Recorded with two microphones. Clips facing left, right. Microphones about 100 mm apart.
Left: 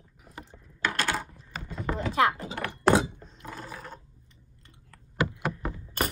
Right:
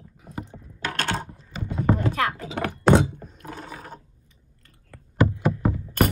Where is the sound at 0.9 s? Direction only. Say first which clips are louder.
Right 3 dB; 55° right (ahead or behind).